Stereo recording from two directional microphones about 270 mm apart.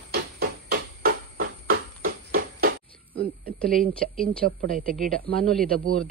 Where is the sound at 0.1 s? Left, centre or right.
Right.